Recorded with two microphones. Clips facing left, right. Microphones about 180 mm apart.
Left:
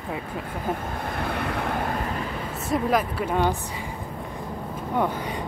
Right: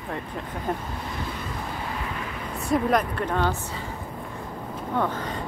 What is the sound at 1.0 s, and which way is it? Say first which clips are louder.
Vehicle: left 5 dB; 60° left (ahead or behind).